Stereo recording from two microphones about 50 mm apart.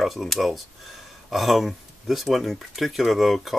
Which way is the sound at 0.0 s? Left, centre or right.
Centre.